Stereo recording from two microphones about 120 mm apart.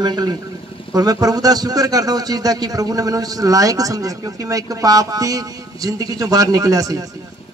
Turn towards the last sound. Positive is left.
turn(degrees=-30)  # may be behind; listen again after turning